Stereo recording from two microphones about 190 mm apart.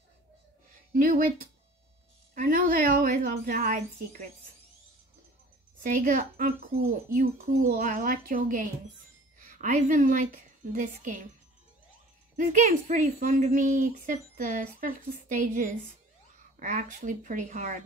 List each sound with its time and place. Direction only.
0.9 s speech: 50° right (ahead or behind)
5.9 s a woman's voice: 45° right (ahead or behind)
12.4 s speech: 40° right (ahead or behind)